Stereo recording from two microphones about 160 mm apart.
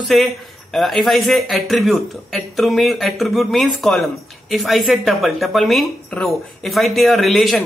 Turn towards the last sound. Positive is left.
turn(degrees=0)  # may be behind; listen again after turning